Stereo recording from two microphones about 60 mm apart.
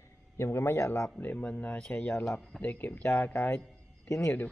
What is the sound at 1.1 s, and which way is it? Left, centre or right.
Speech, left.